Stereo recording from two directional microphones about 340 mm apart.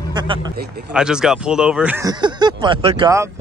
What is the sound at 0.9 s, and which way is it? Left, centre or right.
Speech, centre.